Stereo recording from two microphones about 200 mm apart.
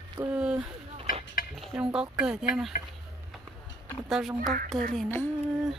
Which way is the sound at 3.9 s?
Centre (ahead or behind).